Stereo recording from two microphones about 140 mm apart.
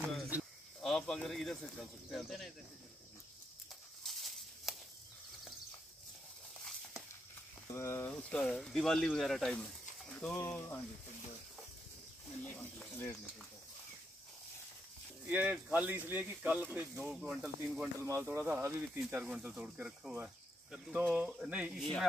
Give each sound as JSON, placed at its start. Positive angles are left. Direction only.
{"t": 0.7, "sound": "speech", "side_deg": 5}
{"t": 4.0, "sound": "a sound", "side_deg": 0}
{"t": 7.7, "sound": "speech", "side_deg": 20}
{"t": 8.1, "sound": "speech", "side_deg": 5}
{"t": 10.4, "sound": "speech", "side_deg": 20}
{"t": 12.4, "sound": "speech", "side_deg": 10}
{"t": 15.2, "sound": "speech", "side_deg": -10}